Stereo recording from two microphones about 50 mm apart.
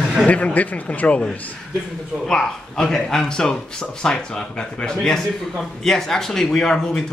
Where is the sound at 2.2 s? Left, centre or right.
Centre.